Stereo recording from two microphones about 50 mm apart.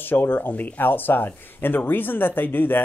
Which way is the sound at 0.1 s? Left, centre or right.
Left.